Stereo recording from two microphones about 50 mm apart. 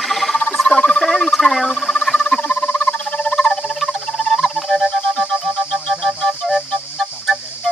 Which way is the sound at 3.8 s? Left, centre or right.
Centre.